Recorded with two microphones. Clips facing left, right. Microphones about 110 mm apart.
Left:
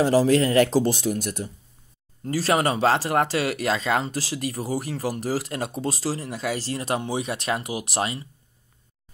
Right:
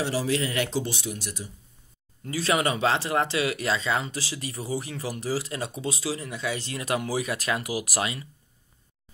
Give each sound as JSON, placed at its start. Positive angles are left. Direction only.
{"t": 0.0, "sound": "speech", "side_deg": 40}
{"t": 2.2, "sound": "speech", "side_deg": 35}